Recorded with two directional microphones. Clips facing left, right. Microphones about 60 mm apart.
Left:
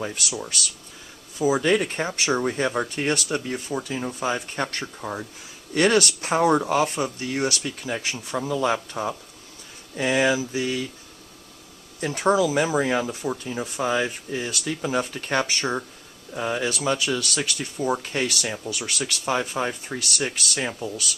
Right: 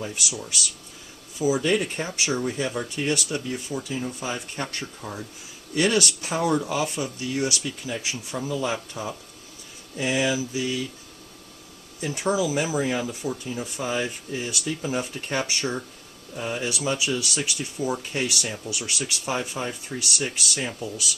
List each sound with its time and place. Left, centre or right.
0.0 s speech: left
1.4 s speech: left
1.7 s speech: left
5.8 s speech: left
12.0 s speech: left
14.6 s speech: left
15.4 s speech: left
16.3 s speech: left